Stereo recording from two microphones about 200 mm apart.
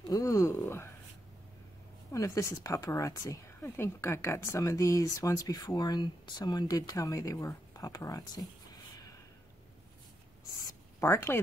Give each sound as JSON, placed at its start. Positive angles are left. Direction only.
{"t": 0.1, "sound": "speech", "side_deg": 15}
{"t": 2.1, "sound": "speech", "side_deg": 15}
{"t": 11.0, "sound": "speech", "side_deg": 15}